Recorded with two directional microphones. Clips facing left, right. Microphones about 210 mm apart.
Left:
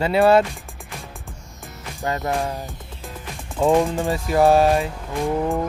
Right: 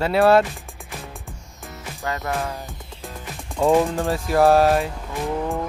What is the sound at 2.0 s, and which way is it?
Music, 25° left (ahead or behind).